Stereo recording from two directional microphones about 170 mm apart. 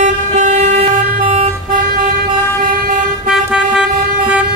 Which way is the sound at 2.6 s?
50° right (ahead or behind).